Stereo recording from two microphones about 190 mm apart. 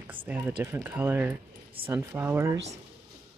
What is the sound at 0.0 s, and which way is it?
Speech, 10° right (ahead or behind).